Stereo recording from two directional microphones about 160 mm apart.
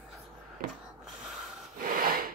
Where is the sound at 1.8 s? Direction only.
65° right (ahead or behind).